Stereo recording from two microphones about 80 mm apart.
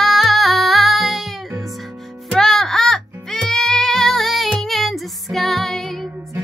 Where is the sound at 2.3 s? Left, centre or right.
Centre.